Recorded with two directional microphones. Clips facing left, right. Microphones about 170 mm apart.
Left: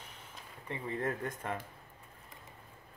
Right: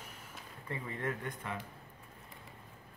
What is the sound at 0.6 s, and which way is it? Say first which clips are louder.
Speech: left 3 dB; 30° left (ahead or behind).